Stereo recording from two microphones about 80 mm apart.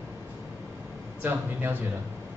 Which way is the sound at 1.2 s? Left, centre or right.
Right.